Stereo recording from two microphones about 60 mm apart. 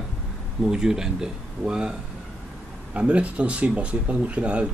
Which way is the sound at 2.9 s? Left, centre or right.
Centre.